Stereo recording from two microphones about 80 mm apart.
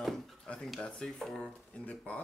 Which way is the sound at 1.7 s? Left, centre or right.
Centre.